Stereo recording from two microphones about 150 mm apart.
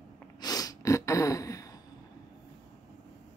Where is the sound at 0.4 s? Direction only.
25° left (ahead or behind).